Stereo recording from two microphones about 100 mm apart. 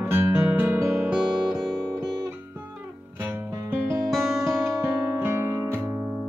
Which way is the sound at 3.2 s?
20° right (ahead or behind).